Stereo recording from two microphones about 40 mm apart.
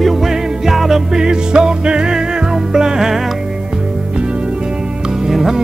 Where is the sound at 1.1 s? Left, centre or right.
Centre.